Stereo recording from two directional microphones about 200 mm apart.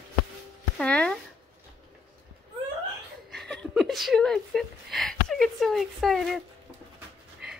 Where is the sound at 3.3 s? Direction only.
Centre (ahead or behind).